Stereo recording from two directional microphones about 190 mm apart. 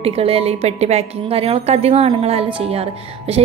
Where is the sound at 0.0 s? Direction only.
30° right (ahead or behind).